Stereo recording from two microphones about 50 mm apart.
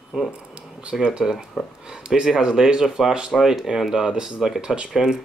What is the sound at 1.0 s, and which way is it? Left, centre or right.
Speech, centre.